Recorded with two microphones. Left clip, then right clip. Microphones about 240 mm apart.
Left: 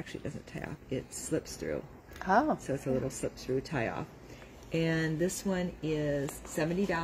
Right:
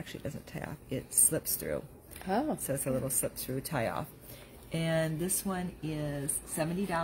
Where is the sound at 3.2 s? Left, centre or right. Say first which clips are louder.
Left 3 dB; right.